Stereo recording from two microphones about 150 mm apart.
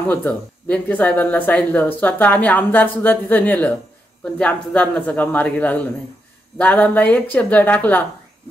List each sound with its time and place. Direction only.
0.1 s speech: 10° left (ahead or behind)